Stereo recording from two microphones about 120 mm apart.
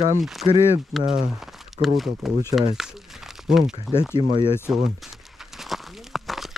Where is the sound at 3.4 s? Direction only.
5° right (ahead or behind).